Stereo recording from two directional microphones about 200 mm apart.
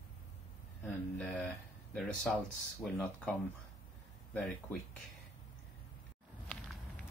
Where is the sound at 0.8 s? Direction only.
10° left (ahead or behind).